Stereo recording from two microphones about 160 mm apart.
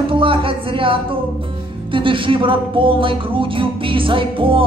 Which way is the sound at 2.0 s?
30° right (ahead or behind).